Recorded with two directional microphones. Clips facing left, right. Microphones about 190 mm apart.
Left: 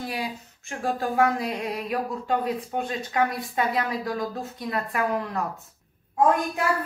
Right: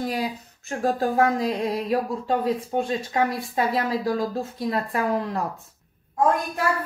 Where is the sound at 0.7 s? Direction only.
40° right (ahead or behind).